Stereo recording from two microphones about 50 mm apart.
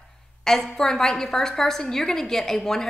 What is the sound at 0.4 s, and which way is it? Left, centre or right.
A woman's voice, centre.